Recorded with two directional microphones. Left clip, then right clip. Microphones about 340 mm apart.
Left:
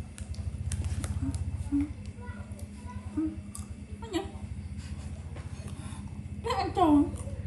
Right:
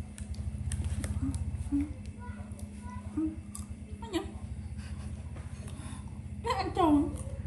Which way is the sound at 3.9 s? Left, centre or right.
Centre.